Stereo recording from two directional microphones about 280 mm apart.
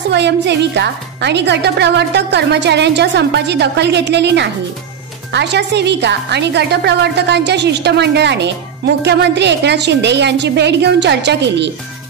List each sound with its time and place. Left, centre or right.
0.1 s a woman's voice: right